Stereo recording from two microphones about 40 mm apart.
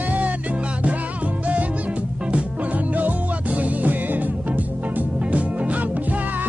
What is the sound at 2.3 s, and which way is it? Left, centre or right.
Music, right.